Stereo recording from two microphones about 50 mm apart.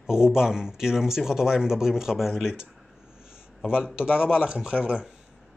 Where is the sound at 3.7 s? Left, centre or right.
Centre.